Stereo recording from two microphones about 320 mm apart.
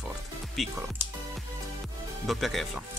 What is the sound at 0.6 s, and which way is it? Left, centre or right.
Speech, centre.